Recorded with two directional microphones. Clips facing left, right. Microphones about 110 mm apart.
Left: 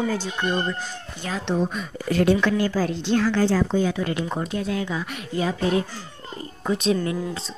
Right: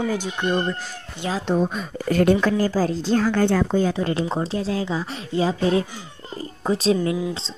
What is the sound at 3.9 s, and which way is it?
Speech, 30° right (ahead or behind).